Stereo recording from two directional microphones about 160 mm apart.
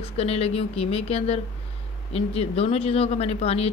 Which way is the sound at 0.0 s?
40° left (ahead or behind).